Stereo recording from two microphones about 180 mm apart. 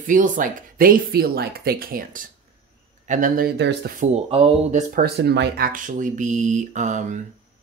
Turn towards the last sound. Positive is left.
turn(degrees=-45)  # may be behind; listen again after turning